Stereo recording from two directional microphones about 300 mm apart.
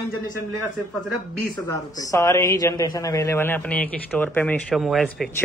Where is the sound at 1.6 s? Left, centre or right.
Centre.